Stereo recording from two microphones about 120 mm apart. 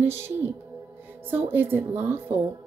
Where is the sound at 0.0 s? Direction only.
20° right (ahead or behind).